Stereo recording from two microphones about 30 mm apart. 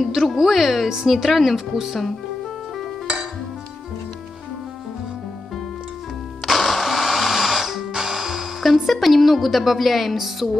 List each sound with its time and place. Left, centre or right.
0.4 s a woman's voice: centre
6.4 s music: centre
7.9 s music: centre
8.6 s a woman's voice: centre